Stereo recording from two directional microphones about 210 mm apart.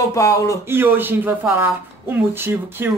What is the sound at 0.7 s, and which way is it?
Speech, 10° right (ahead or behind).